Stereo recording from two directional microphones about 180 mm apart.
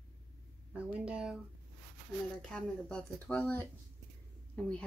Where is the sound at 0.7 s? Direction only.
5° right (ahead or behind).